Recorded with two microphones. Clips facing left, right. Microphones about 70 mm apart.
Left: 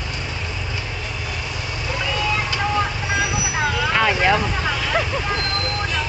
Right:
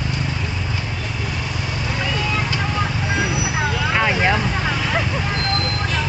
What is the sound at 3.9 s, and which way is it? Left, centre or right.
Vehicle, centre.